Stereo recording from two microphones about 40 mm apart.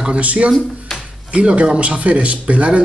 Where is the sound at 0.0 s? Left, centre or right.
Right.